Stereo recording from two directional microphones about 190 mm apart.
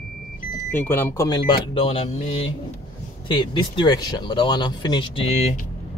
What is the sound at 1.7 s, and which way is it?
Mantra, 30° left (ahead or behind).